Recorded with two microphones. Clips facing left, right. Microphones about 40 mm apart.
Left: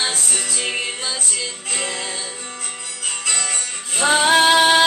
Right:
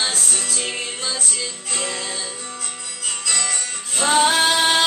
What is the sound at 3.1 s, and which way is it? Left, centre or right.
Music, left.